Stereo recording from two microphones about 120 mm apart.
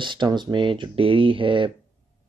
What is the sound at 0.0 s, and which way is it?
Speech, 40° right (ahead or behind).